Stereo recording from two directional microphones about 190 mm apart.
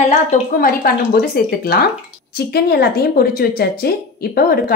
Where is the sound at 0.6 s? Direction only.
50° left (ahead or behind).